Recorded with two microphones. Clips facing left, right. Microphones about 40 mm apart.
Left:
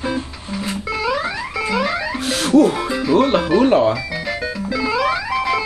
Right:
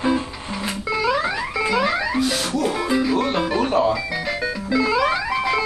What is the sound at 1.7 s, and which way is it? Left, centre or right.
Music, centre.